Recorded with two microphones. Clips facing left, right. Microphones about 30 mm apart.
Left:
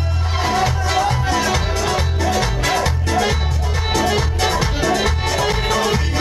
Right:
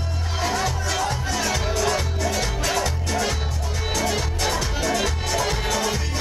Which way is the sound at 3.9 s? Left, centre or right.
Left.